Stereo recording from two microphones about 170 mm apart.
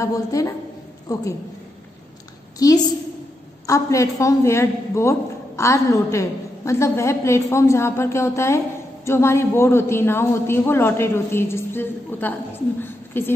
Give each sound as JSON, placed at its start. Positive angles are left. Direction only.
{"t": 0.0, "sound": "a woman's voice", "side_deg": 20}
{"t": 3.6, "sound": "a man's voice", "side_deg": 20}